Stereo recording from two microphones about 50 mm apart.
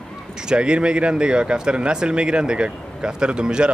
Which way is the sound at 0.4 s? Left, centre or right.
Centre.